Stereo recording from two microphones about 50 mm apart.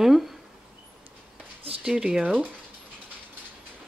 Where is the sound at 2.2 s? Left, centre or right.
Right.